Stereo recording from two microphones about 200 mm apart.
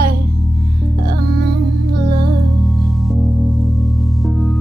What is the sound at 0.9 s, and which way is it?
Music, 50° right (ahead or behind).